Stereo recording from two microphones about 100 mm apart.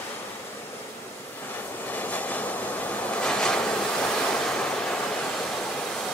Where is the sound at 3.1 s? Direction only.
10° left (ahead or behind).